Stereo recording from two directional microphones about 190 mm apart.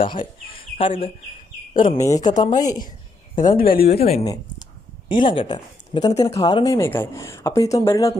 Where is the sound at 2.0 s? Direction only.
15° left (ahead or behind).